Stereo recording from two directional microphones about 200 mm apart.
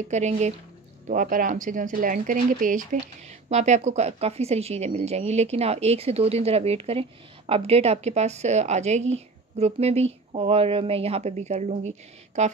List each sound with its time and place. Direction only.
0.1 s speech: 35° right (ahead or behind)